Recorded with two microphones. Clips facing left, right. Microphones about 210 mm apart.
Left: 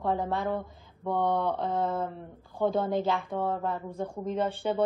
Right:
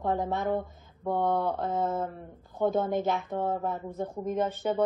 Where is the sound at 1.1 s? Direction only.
5° right (ahead or behind).